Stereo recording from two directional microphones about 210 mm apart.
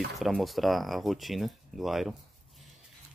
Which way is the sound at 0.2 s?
Centre (ahead or behind).